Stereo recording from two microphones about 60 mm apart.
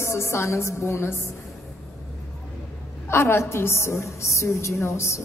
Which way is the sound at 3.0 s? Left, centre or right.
Left.